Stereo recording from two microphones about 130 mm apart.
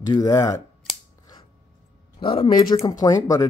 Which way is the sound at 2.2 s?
45° left (ahead or behind).